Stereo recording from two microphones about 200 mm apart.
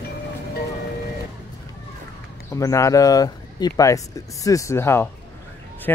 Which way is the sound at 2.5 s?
15° left (ahead or behind).